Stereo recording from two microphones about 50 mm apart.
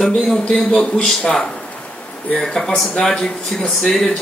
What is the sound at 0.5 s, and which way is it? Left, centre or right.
Speech, centre.